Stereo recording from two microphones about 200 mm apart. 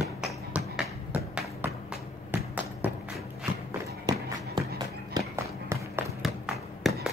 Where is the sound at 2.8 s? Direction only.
Centre (ahead or behind).